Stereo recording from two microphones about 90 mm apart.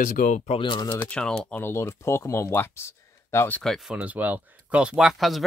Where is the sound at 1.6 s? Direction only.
30° left (ahead or behind).